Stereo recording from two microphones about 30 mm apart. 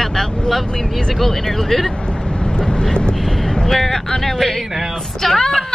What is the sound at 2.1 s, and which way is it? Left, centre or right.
Vehicle, left.